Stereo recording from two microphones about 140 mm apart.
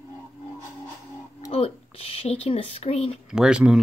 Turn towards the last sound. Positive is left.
turn(degrees=-5)  # may be behind; listen again after turning